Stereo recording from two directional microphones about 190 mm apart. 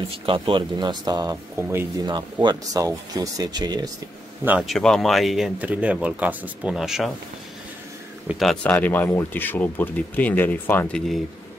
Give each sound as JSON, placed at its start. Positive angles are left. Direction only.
{"t": 0.3, "sound": "speech", "side_deg": -25}
{"t": 4.5, "sound": "speech", "side_deg": -5}
{"t": 8.3, "sound": "speech", "side_deg": 0}
{"t": 8.7, "sound": "speech", "side_deg": 10}